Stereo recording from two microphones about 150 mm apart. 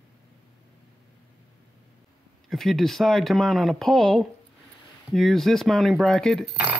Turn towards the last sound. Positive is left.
turn(degrees=5)  # may be behind; listen again after turning